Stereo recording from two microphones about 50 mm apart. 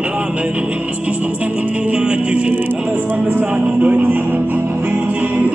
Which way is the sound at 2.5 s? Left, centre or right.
Right.